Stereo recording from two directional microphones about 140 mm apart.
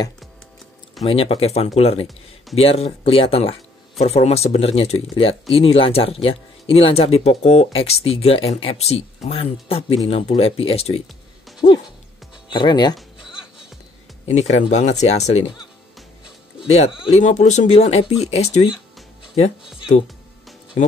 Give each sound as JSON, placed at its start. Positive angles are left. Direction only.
{"t": 1.0, "sound": "speech", "side_deg": 45}
{"t": 12.4, "sound": "speech", "side_deg": 35}
{"t": 14.5, "sound": "speech", "side_deg": 55}
{"t": 16.6, "sound": "speech", "side_deg": 50}
{"t": 20.8, "sound": "speech", "side_deg": 65}